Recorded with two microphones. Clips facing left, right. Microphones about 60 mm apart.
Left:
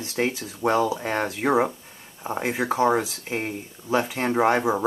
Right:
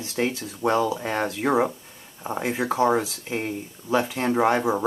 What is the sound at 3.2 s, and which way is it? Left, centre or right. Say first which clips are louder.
Speech: even; centre.